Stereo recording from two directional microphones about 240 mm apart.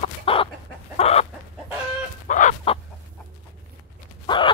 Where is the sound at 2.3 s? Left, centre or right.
Left.